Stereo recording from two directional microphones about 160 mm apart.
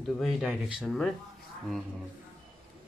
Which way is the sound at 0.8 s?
5° left (ahead or behind).